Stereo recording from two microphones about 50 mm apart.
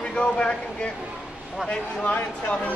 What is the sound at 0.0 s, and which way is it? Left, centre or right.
Speech, left.